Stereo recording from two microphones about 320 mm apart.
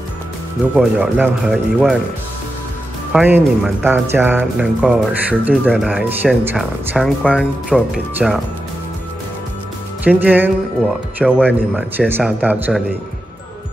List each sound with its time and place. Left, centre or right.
0.7 s speech: centre
3.1 s speech: centre
10.0 s speech: centre